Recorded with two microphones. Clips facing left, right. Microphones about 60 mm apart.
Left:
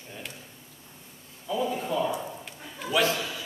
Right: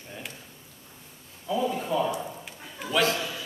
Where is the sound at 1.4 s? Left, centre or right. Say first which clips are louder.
Right 1 dB; centre.